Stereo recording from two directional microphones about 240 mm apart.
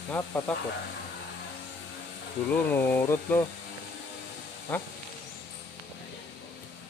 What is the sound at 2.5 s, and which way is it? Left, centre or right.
Speech, centre.